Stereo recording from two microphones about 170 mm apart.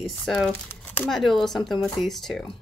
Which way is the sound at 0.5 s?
10° left (ahead or behind).